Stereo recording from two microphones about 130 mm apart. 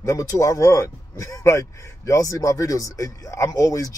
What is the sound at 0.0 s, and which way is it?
Speech, 25° left (ahead or behind).